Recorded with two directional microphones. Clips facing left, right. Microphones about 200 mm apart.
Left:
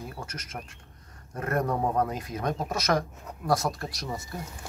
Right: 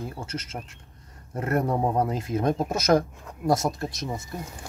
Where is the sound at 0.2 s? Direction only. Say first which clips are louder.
Right 4 dB; 25° right (ahead or behind).